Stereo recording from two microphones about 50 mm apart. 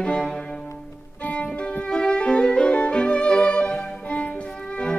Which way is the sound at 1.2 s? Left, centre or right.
Left.